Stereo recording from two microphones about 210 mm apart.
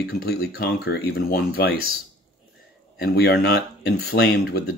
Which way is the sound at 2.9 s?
45° left (ahead or behind).